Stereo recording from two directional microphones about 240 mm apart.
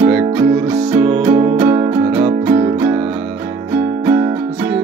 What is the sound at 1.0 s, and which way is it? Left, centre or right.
Music, right.